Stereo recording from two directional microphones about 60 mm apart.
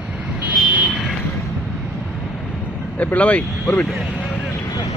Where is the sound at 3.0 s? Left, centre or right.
Left.